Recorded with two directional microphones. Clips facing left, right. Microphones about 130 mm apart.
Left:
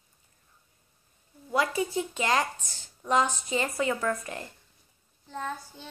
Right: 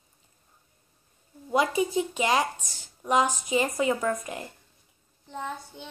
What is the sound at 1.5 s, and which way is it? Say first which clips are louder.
A child's voice: right 3 dB; 20° right (ahead or behind).